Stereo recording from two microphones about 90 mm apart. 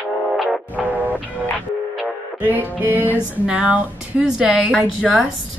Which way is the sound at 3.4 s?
15° right (ahead or behind).